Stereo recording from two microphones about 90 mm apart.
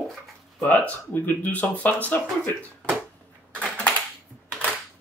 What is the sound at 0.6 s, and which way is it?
Speech, 20° left (ahead or behind).